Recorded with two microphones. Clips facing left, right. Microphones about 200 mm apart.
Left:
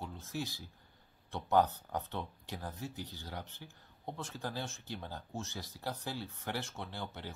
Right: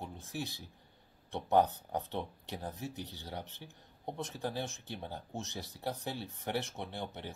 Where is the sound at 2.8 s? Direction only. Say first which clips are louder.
Right 1 dB; 65° right (ahead or behind).